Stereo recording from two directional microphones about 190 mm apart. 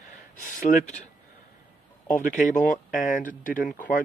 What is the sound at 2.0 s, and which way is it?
Speech, 45° left (ahead or behind).